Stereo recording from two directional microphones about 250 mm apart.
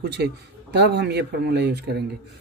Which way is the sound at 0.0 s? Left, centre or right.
Right.